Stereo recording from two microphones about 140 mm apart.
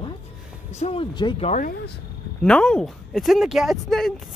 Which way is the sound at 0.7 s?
50° left (ahead or behind).